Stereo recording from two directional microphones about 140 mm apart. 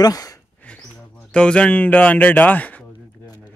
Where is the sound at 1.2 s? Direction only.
5° left (ahead or behind).